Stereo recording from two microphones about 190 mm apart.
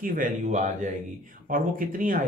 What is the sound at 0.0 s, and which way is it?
Speech, 45° right (ahead or behind).